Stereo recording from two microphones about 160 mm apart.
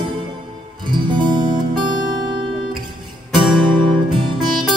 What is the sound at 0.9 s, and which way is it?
Music, 30° right (ahead or behind).